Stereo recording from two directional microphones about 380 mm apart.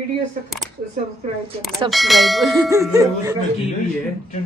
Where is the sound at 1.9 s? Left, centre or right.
Centre.